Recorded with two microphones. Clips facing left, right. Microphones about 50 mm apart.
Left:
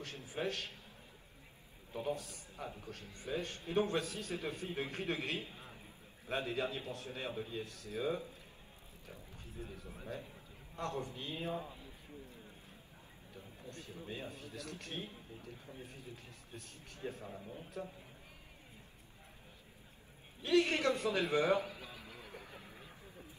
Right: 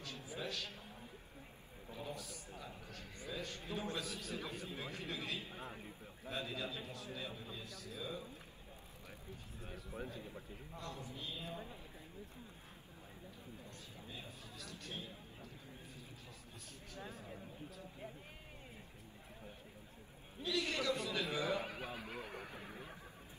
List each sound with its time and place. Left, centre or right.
0.0 s a sound: left
2.0 s a sound: left
2.7 s a man's voice: left
5.5 s a man's voice: right
6.2 s a man's voice: left
9.7 s a man's voice: right
10.8 s a man's voice: left
13.7 s a man's voice: left
16.5 s a man's voice: left
20.4 s a man's voice: left
21.5 s radio: right